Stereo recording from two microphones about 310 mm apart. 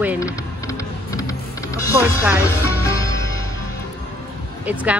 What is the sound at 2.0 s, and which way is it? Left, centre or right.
Music, centre.